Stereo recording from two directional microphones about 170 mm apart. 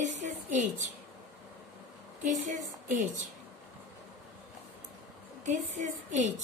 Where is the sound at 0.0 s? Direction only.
45° right (ahead or behind).